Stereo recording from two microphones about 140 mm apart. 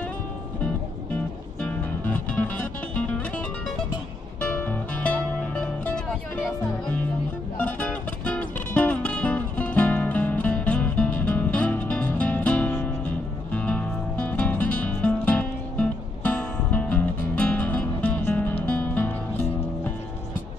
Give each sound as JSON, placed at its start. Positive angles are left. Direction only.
{"t": 2.0, "sound": "music", "side_deg": 10}
{"t": 4.4, "sound": "music", "side_deg": 10}
{"t": 7.5, "sound": "music", "side_deg": 10}